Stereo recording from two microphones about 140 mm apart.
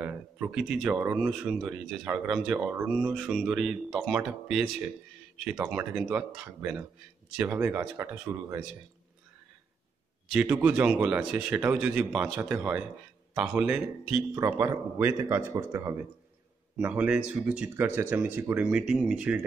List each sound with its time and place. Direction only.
0.0 s speech: 5° right (ahead or behind)
10.3 s speech: 10° right (ahead or behind)
14.3 s speech: 20° right (ahead or behind)